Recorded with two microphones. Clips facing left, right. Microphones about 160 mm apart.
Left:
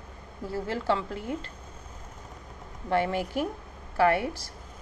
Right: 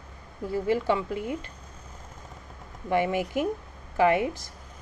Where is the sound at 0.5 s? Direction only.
15° right (ahead or behind).